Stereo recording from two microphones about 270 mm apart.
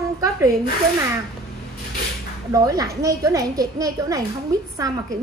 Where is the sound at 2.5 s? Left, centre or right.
Centre.